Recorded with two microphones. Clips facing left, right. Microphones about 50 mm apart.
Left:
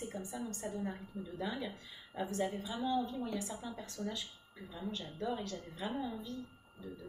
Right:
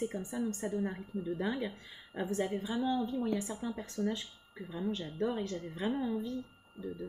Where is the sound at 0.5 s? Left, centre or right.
Right.